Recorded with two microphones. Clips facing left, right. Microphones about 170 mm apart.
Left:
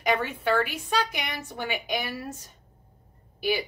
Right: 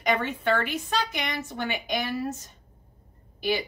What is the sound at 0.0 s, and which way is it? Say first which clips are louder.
A woman's voice: even; 5° left (ahead or behind).